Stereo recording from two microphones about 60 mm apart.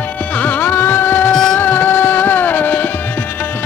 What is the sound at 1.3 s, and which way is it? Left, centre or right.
Music, centre.